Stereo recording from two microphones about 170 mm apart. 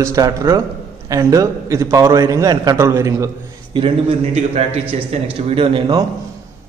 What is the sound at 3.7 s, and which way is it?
Speech, 25° right (ahead or behind).